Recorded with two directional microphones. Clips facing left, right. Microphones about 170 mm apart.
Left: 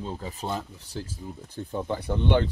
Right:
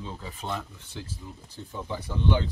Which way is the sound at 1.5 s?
55° left (ahead or behind).